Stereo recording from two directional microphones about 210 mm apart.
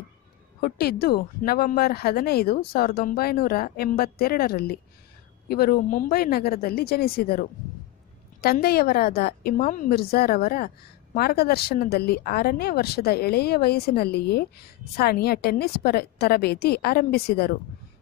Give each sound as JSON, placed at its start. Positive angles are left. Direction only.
{"t": 0.6, "sound": "speech", "side_deg": 45}